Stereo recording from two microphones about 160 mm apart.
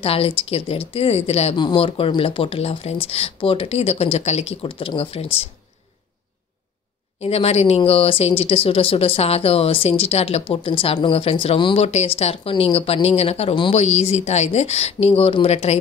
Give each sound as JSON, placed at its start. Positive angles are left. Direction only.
{"t": 0.0, "sound": "speech", "side_deg": 35}
{"t": 7.2, "sound": "speech", "side_deg": 40}